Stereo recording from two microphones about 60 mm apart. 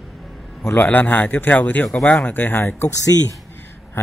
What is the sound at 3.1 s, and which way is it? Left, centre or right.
Speech, right.